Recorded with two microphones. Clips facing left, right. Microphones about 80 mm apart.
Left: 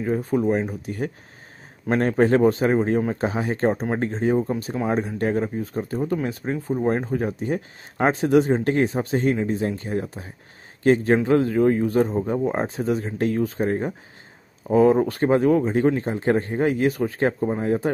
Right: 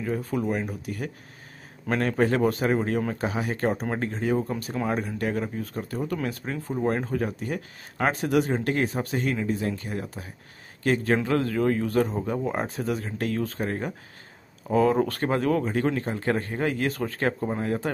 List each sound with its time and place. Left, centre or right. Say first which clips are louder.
0.0 s a man's voice: left 6 dB; left; by 17.6 s centre